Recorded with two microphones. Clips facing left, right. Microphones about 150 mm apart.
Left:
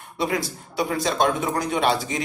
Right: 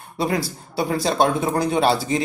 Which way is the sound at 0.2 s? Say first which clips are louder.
Right 2 dB; 35° right (ahead or behind).